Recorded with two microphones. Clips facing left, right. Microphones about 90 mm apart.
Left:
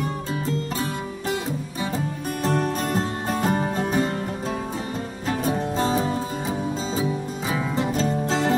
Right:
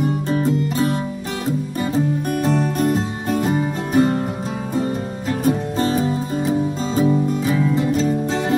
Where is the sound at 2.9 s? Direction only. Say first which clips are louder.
Right 4 dB; 45° left (ahead or behind).